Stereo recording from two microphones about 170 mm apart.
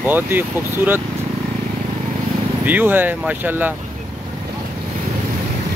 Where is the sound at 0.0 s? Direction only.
10° right (ahead or behind).